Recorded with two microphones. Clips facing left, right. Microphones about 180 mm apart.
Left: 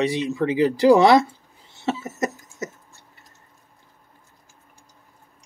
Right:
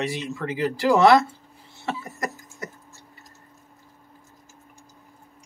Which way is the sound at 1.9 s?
25° left (ahead or behind).